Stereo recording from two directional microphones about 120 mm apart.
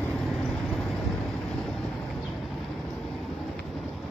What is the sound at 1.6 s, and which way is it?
Boat, centre (ahead or behind).